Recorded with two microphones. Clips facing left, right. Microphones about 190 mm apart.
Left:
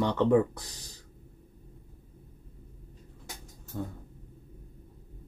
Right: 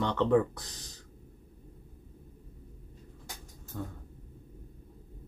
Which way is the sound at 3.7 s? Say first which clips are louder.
Left 3 dB; 15° left (ahead or behind).